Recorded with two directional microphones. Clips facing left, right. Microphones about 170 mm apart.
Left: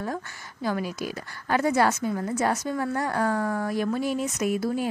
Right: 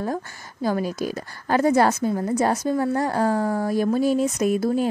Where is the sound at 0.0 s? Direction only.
40° right (ahead or behind).